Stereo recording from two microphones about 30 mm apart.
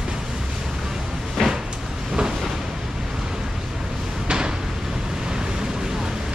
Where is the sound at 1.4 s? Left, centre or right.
Centre.